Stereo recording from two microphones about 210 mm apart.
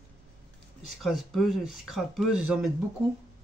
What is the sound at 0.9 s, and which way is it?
Speech, centre (ahead or behind).